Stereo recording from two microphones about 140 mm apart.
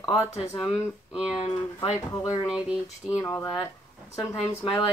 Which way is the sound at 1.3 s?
40° left (ahead or behind).